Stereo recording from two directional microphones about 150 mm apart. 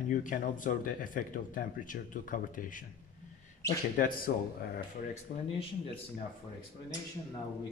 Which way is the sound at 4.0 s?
75° left (ahead or behind).